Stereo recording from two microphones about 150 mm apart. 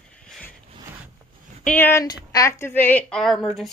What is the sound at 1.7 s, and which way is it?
A woman's voice, 15° left (ahead or behind).